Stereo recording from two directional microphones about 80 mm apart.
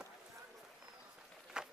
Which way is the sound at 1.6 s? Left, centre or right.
Centre.